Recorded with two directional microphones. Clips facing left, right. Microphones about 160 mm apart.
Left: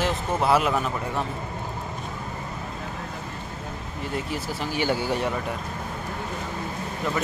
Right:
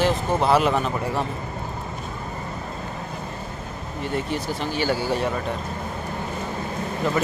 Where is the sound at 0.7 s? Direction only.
30° right (ahead or behind).